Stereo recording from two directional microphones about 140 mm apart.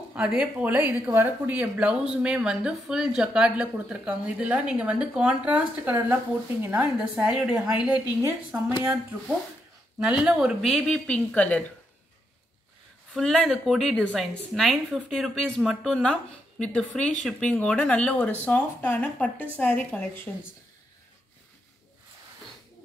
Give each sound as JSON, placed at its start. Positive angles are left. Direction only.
{"t": 0.1, "sound": "speech", "side_deg": -5}
{"t": 8.5, "sound": "speech", "side_deg": -15}
{"t": 9.9, "sound": "a woman's voice", "side_deg": -5}
{"t": 10.7, "sound": "speech", "side_deg": 5}
{"t": 13.1, "sound": "a woman's voice", "side_deg": 5}